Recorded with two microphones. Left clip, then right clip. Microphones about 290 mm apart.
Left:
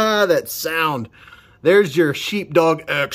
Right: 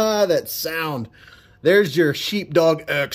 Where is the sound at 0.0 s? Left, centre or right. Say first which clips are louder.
Left 2 dB; centre.